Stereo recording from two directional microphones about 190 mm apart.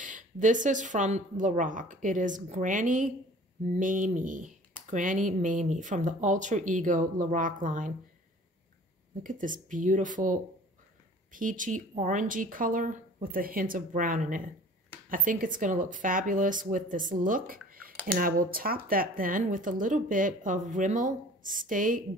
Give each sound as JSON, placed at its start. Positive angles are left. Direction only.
{"t": 0.0, "sound": "speech", "side_deg": -40}
{"t": 9.2, "sound": "speech", "side_deg": -45}